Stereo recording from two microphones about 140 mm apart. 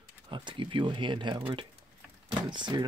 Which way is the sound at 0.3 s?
35° right (ahead or behind).